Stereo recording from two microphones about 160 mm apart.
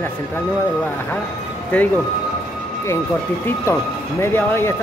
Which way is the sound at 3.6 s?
15° left (ahead or behind).